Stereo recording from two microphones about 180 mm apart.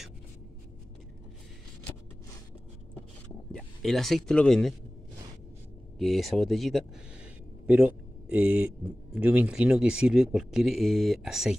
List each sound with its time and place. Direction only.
3.5 s speech: centre (ahead or behind)
5.9 s a man's voice: centre (ahead or behind)